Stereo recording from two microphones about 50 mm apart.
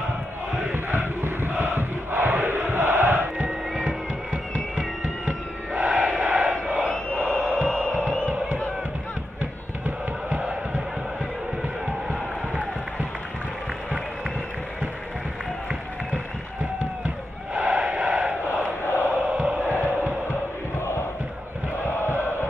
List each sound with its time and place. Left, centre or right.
0.8 s crowd: right
3.8 s music: right
5.8 s crowd: right
7.8 s music: right
17.6 s a sound: right
19.0 s music: right